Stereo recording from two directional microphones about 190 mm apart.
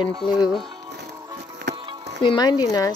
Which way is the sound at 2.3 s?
20° left (ahead or behind).